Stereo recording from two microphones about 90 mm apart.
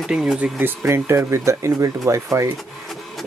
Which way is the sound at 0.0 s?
10° right (ahead or behind).